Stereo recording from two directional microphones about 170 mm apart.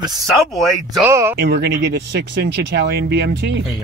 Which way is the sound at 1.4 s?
85° right.